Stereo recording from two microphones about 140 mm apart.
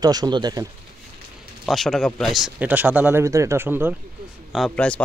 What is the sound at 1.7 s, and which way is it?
Speech, 5° left (ahead or behind).